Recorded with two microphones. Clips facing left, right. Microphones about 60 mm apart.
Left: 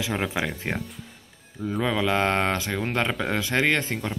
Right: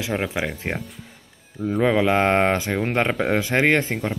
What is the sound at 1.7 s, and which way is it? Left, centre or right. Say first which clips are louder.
Speech: right 5 dB; right.